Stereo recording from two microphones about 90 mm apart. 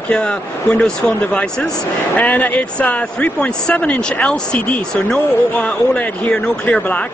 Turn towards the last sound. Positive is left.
turn(degrees=15)  # may be behind; listen again after turning